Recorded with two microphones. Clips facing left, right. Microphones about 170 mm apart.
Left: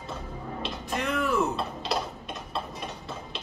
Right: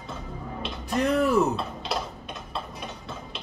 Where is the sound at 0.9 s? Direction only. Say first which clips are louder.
Right 6 dB; 40° right (ahead or behind).